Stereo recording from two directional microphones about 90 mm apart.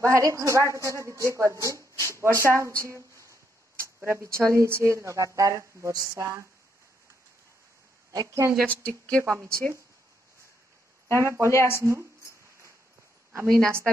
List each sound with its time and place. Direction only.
0.0 s speech: 35° right (ahead or behind)
2.8 s a sound: 35° right (ahead or behind)
4.4 s speech: 30° right (ahead or behind)
8.1 s speech: 35° right (ahead or behind)
8.6 s a woman's voice: 15° left (ahead or behind)
9.2 s speech: 30° right (ahead or behind)
11.1 s speech: 35° right (ahead or behind)
11.4 s speech: 30° left (ahead or behind)
11.7 s speech: 30° right (ahead or behind)
13.3 s a woman's voice: 30° right (ahead or behind)